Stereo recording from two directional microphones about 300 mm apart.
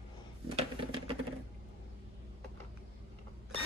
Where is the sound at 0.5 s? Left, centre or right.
Centre.